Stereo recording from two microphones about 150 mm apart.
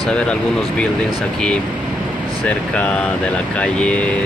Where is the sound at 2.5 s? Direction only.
5° left (ahead or behind).